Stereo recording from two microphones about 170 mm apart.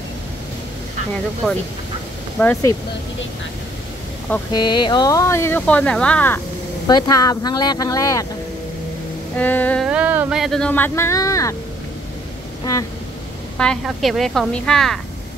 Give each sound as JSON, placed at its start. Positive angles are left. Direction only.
{"t": 2.3, "sound": "speech", "side_deg": 10}
{"t": 4.5, "sound": "speech", "side_deg": 25}
{"t": 6.9, "sound": "speech", "side_deg": 20}
{"t": 9.4, "sound": "speech", "side_deg": 10}
{"t": 9.8, "sound": "speech", "side_deg": -10}
{"t": 13.6, "sound": "a woman's voice", "side_deg": 5}